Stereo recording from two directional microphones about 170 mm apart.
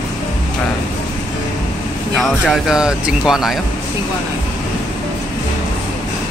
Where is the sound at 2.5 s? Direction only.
5° right (ahead or behind).